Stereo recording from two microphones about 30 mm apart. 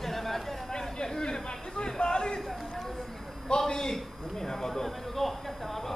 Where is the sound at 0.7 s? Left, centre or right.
Left.